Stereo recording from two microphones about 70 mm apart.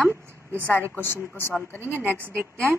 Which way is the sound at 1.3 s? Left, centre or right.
Left.